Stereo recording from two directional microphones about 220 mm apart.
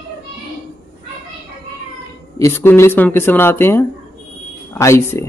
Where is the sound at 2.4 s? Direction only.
10° left (ahead or behind).